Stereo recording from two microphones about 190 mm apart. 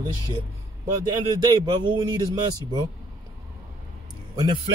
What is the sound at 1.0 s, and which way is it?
Speech, 25° right (ahead or behind).